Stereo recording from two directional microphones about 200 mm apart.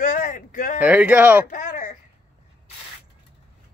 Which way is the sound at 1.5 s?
40° left (ahead or behind).